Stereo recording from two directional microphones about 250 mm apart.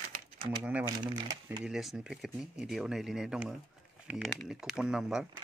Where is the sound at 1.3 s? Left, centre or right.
Centre.